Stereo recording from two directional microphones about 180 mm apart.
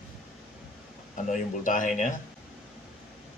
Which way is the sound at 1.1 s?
45° left (ahead or behind).